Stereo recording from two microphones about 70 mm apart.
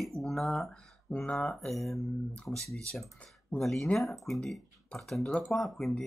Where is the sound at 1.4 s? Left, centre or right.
Centre.